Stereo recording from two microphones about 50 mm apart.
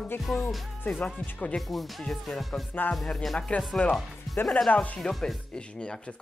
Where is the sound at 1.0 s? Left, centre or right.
Left.